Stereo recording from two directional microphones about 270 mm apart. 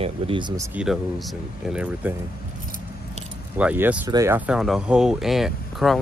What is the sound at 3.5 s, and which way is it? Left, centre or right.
Speech, centre.